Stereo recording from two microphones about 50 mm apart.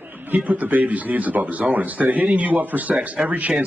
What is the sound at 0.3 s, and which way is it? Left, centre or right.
Speech, right.